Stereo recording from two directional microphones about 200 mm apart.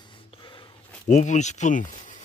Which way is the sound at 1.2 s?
35° left (ahead or behind).